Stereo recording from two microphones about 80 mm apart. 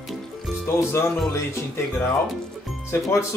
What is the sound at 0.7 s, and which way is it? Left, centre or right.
Speech, left.